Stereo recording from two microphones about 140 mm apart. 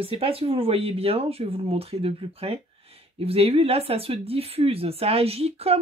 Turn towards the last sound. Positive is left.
turn(degrees=-45)  # may be behind; listen again after turning